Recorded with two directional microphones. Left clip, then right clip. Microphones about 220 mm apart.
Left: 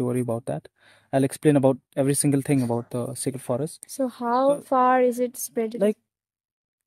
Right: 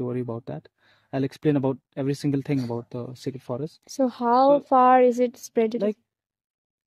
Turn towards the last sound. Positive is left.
turn(degrees=-25)  # may be behind; listen again after turning